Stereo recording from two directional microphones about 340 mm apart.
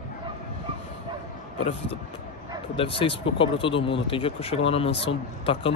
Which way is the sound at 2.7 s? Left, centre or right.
Centre.